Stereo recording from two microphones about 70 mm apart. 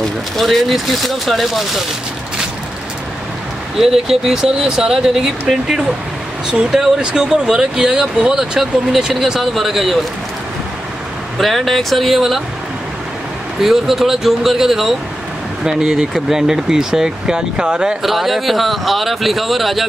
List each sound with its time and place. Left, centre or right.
0.0 s speech: centre
3.7 s speech: centre
11.3 s speech: centre
13.6 s speech: centre